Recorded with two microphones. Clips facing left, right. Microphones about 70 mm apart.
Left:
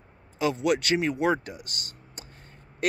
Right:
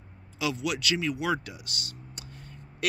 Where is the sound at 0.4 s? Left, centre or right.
Left.